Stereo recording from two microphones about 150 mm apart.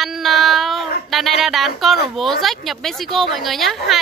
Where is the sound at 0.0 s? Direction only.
Centre (ahead or behind).